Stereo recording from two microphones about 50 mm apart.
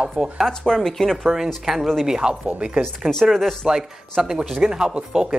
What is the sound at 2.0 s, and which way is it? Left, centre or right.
Speech, centre.